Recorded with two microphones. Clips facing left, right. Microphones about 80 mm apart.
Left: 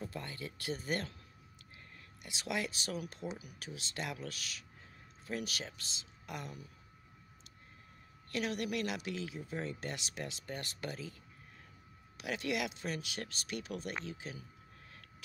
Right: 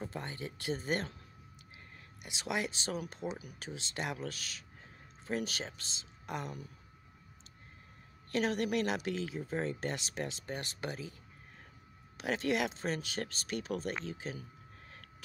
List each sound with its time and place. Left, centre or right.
0.0 s speech: right
2.2 s speech: right
8.3 s speech: right
12.2 s speech: right